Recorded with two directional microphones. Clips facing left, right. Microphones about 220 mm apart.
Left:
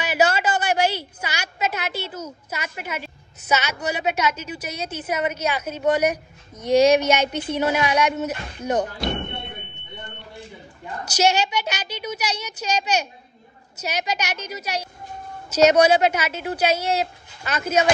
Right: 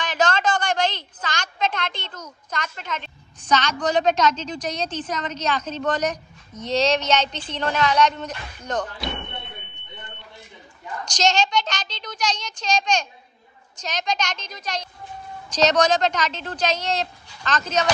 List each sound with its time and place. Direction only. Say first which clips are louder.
0.0 s a sound: left 2 dB; 10° left (ahead or behind)
2.5 s a woman's voice: right 1 dB; 10° left (ahead or behind)
9.4 s smoke detector: left 4 dB; 30° left (ahead or behind)
11.1 s a woman's voice: left 2 dB; 10° left (ahead or behind)